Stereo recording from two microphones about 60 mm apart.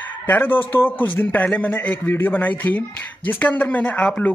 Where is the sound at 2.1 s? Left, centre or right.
Left.